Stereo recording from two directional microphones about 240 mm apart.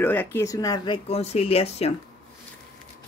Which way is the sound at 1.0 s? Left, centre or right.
Left.